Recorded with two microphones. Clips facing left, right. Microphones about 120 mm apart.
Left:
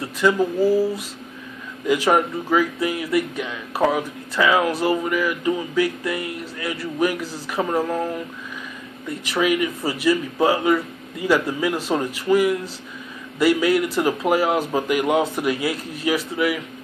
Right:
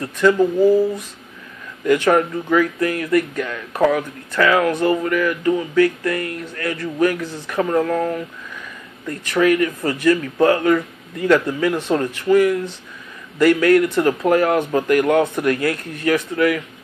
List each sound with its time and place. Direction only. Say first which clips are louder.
0.0 s speech: right 3 dB; 10° left (ahead or behind)
1.9 s speech: right 3 dB; 15° left (ahead or behind)